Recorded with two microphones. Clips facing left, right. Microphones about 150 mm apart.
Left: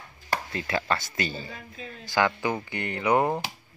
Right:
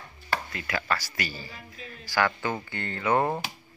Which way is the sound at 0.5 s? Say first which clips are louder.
Left 3 dB; 25° left (ahead or behind).